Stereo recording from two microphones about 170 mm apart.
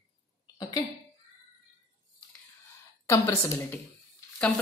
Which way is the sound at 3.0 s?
20° left (ahead or behind).